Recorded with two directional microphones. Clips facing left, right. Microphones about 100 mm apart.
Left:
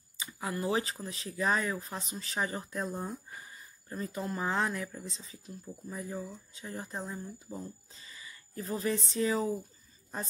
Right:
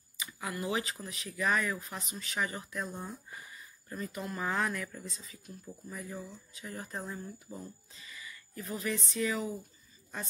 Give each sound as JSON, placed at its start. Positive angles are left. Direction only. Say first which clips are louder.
{"t": 0.2, "sound": "speech", "louder": "left 3 dB", "side_deg": 30}
{"t": 7.9, "sound": "speech", "louder": "right 2 dB", "side_deg": 30}